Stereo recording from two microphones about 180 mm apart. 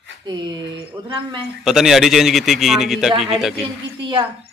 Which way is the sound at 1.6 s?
Centre (ahead or behind).